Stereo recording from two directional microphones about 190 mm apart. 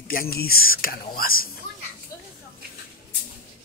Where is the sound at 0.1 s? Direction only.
50° left (ahead or behind).